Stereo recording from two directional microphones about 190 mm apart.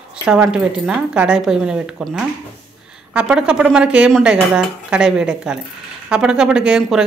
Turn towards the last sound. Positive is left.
turn(degrees=-5)  # may be behind; listen again after turning